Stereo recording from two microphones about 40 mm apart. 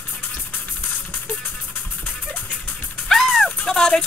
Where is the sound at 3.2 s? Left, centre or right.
Centre.